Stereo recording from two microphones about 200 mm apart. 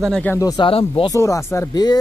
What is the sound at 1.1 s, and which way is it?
Speech, 15° left (ahead or behind).